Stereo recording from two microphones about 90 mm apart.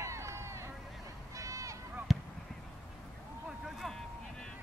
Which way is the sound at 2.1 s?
Centre (ahead or behind).